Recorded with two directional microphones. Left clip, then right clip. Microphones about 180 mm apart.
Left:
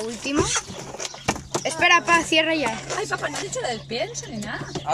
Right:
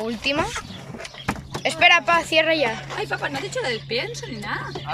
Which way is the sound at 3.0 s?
40° left (ahead or behind).